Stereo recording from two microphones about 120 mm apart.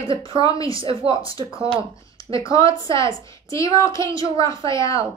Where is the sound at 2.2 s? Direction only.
25° left (ahead or behind).